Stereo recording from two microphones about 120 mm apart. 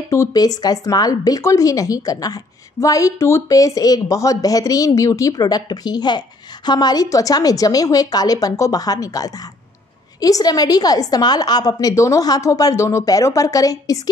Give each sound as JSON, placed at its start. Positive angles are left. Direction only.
{"t": 0.1, "sound": "speech", "side_deg": 30}